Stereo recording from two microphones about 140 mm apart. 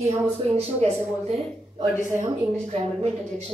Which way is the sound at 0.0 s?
50° right (ahead or behind).